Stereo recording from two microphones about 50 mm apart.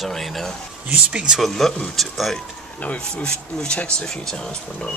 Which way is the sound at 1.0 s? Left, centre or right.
Centre.